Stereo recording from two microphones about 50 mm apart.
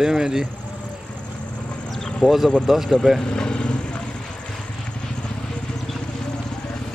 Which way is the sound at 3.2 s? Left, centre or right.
Centre.